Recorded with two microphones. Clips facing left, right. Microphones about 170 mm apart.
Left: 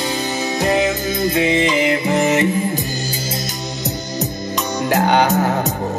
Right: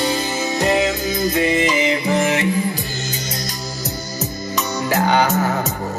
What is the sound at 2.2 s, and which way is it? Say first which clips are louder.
Music: left 5 dB; 20° left (ahead or behind).